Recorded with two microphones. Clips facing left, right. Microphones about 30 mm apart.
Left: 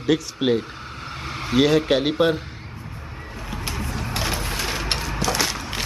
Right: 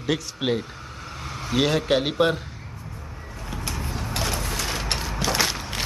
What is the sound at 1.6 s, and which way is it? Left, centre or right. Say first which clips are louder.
Speech: left 3 dB; centre.